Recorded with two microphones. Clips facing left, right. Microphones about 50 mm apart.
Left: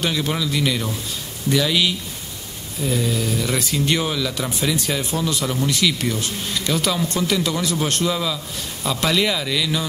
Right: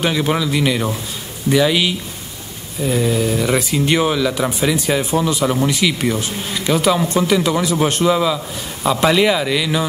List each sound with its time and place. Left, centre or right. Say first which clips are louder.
0.0 s speech: right 5 dB; centre